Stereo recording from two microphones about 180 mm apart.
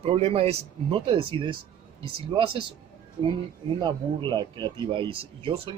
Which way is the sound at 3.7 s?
25° right (ahead or behind).